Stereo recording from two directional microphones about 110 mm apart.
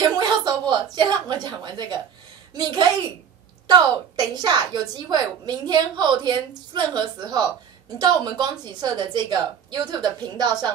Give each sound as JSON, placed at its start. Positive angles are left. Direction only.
{"t": 0.0, "sound": "a woman's voice", "side_deg": -40}
{"t": 4.4, "sound": "a woman's voice", "side_deg": -40}